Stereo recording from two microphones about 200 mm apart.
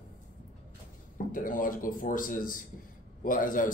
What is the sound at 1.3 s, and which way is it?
A man's voice, 45° left (ahead or behind).